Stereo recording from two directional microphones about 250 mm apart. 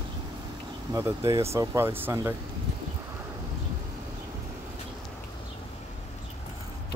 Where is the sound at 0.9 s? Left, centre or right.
Centre.